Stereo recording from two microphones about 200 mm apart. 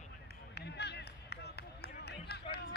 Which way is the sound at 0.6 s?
55° left (ahead or behind).